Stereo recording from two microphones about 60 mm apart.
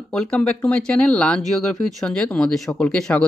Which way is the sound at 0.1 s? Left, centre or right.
Centre.